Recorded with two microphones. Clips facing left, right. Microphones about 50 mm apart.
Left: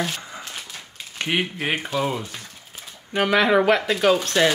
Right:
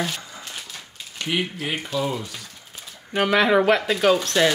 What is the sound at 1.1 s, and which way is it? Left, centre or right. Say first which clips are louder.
Speech: left 1 dB; left.